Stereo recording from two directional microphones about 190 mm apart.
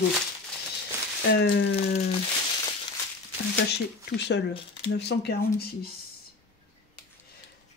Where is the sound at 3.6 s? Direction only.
60° left (ahead or behind).